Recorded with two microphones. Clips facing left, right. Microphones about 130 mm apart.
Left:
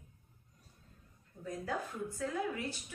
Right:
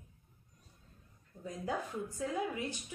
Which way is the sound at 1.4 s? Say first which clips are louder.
Right 1 dB; 20° right (ahead or behind).